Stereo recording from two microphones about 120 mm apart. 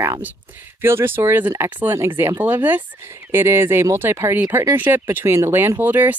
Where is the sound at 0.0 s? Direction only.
20° right (ahead or behind).